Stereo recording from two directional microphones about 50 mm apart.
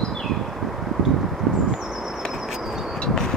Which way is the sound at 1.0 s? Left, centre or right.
Centre.